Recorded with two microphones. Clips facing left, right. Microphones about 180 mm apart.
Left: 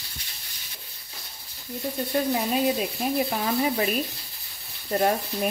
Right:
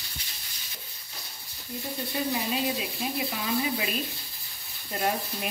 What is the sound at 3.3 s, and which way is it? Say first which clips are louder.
Speech: left 4 dB; 50° left (ahead or behind).